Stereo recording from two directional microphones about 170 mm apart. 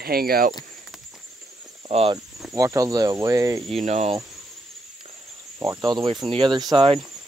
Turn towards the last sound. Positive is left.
turn(degrees=-30)  # may be behind; listen again after turning